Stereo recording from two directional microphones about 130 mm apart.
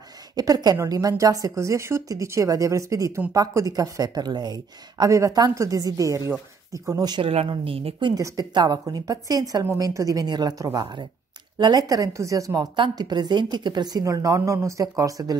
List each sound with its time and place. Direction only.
0.4 s a woman's voice: 30° right (ahead or behind)
7.2 s speech: 45° right (ahead or behind)
8.1 s speech: 25° right (ahead or behind)